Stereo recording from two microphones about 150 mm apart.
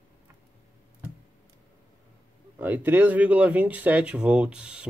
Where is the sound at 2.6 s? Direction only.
15° right (ahead or behind).